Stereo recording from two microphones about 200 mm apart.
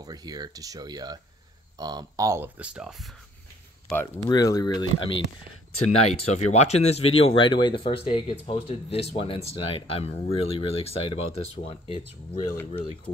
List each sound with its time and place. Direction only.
0.0 s speech: 20° right (ahead or behind); by 3.0 s 5° right (ahead or behind)
3.9 s speech: 10° left (ahead or behind)
5.9 s speech: 35° left (ahead or behind)